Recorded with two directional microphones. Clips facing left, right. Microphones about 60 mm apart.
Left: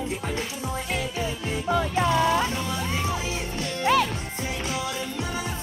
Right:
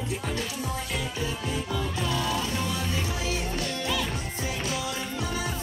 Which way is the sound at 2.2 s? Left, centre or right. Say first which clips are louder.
Left 7 dB; left.